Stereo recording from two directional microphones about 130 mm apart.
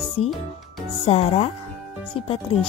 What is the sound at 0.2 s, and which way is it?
Speech, 50° left (ahead or behind).